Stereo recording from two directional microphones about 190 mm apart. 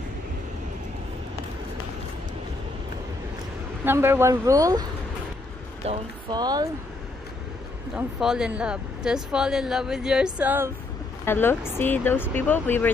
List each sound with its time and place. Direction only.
3.8 s speech: 10° right (ahead or behind)
5.8 s speech: 35° right (ahead or behind)
6.3 s speech: 20° right (ahead or behind)
7.9 s speech: 5° right (ahead or behind)
11.2 s speech: 10° left (ahead or behind)